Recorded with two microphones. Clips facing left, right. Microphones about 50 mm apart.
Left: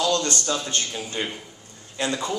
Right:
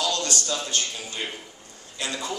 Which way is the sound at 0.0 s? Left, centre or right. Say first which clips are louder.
Left 4 dB; left.